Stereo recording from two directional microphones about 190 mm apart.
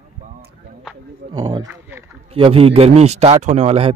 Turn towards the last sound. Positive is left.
turn(degrees=-30)  # may be behind; listen again after turning